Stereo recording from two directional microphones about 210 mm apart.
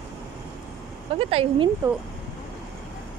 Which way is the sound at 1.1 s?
25° right (ahead or behind).